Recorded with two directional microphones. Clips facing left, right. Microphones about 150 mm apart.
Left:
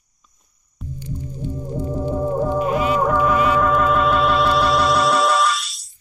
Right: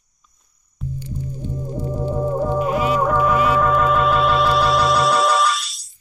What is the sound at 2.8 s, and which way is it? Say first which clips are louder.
Music: even; 10° right (ahead or behind).